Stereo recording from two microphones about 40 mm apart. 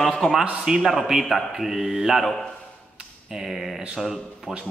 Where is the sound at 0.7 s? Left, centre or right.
Centre.